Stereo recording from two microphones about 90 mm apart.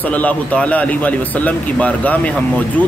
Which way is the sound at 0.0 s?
15° left (ahead or behind).